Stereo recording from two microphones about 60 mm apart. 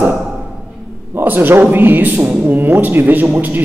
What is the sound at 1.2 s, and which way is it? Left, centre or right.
A man's voice, right.